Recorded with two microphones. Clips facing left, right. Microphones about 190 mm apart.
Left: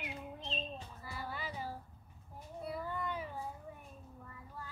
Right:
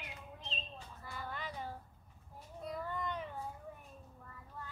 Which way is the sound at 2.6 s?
5° left (ahead or behind).